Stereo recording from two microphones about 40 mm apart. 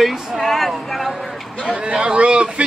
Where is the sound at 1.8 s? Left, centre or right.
Right.